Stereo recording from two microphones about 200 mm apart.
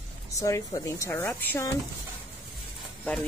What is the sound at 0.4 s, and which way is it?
Speech, 15° left (ahead or behind).